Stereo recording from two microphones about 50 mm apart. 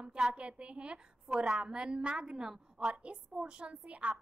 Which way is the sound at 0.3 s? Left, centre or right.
Right.